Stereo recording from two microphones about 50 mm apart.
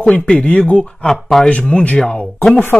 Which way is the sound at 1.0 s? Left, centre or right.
Centre.